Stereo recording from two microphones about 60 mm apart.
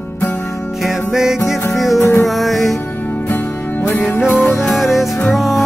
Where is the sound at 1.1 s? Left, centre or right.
Centre.